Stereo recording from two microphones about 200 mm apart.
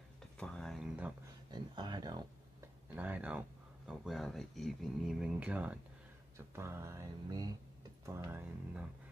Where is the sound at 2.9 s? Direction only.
10° right (ahead or behind).